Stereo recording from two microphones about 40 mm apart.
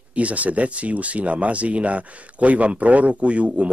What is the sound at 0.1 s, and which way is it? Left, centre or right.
Speech, right.